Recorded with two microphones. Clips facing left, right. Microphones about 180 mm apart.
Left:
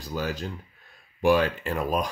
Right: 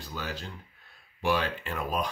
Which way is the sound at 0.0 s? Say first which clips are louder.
Left 7 dB; 40° left (ahead or behind).